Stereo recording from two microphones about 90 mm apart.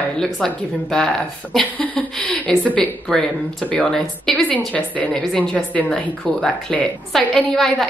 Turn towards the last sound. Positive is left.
turn(degrees=5)  # may be behind; listen again after turning